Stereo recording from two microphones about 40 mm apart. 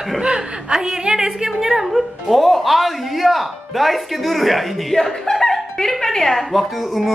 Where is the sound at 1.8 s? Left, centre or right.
Centre.